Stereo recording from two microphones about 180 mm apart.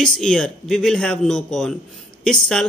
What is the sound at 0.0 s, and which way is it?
A man's voice, 5° left (ahead or behind).